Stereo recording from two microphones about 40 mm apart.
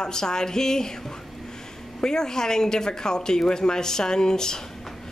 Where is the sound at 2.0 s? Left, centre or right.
Centre.